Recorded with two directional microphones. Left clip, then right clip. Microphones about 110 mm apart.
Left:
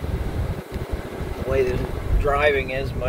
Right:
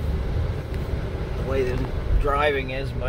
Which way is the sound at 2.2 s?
20° right (ahead or behind).